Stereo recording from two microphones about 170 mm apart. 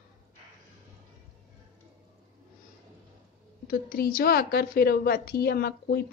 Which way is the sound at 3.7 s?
55° left (ahead or behind).